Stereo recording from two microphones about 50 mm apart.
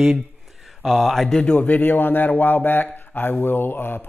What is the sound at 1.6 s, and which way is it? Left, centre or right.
Speech, left.